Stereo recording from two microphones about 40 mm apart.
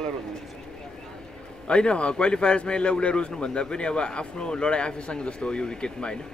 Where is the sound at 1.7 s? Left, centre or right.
Left.